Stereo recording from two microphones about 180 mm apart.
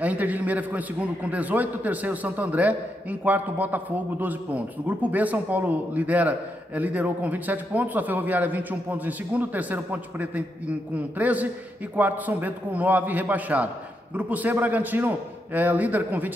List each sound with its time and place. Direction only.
0.0 s a man's voice: 10° right (ahead or behind)